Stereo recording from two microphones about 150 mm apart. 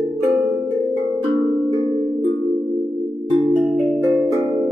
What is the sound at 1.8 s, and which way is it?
Music, 30° left (ahead or behind).